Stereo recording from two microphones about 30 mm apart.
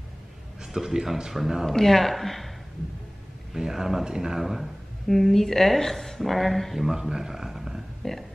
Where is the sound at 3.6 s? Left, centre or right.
Centre.